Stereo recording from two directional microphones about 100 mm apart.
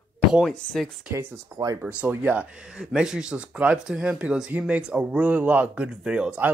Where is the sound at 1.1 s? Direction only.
25° right (ahead or behind).